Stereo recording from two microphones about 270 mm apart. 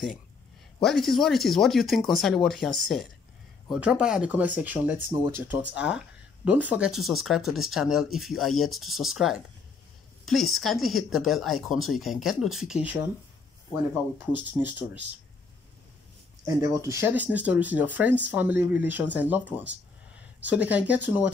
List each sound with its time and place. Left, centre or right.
0.7 s speech: centre
14.5 s speech: centre
16.4 s speech: centre